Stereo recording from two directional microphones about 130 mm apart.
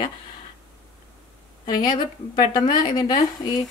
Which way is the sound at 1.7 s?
35° left (ahead or behind).